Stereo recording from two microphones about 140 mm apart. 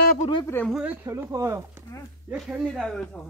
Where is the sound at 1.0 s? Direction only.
25° right (ahead or behind).